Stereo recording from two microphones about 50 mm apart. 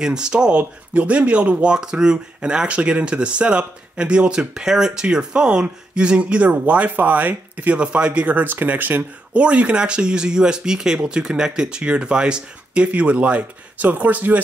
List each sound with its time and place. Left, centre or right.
0.0 s speech: centre; by 7.7 s right
7.7 s speech: right
9.3 s speech: right